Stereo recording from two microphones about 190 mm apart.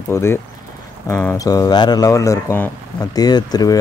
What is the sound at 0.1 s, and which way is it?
Speech, 15° left (ahead or behind).